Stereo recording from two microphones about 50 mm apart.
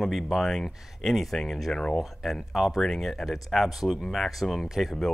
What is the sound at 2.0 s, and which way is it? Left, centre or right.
Speech, centre.